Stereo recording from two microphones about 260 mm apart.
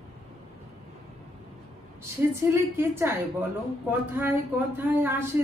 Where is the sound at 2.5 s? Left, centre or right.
Centre.